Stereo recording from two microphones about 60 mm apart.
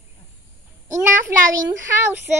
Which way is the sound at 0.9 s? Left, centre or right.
Right.